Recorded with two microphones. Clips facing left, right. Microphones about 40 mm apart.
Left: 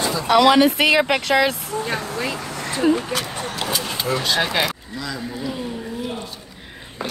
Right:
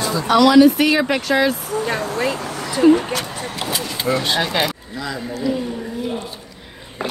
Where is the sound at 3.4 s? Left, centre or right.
Right.